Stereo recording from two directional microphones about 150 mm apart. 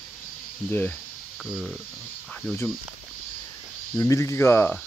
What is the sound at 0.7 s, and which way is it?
Cricket, 10° left (ahead or behind).